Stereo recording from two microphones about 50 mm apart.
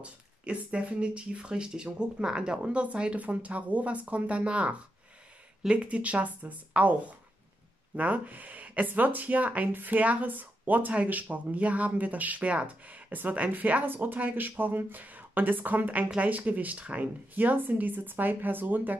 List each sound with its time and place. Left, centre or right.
0.0 s speech: right
5.9 s speech: right